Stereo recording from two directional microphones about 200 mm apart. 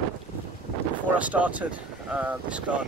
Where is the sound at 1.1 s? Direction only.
5° right (ahead or behind).